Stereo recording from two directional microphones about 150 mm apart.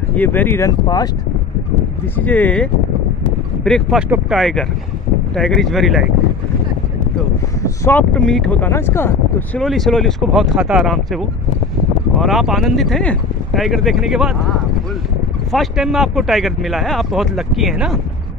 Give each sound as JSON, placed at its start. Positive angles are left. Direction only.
{"t": 0.1, "sound": "speech", "side_deg": 10}
{"t": 2.1, "sound": "speech", "side_deg": 10}
{"t": 7.6, "sound": "speech", "side_deg": 20}
{"t": 8.1, "sound": "speech", "side_deg": 5}
{"t": 9.6, "sound": "speech", "side_deg": 0}
{"t": 12.2, "sound": "speech", "side_deg": 0}
{"t": 15.5, "sound": "speech", "side_deg": 0}